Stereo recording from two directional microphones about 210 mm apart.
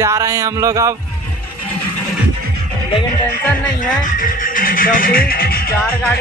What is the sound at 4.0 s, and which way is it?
Music, 40° left (ahead or behind).